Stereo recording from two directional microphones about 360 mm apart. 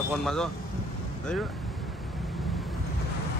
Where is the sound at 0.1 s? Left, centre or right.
Centre.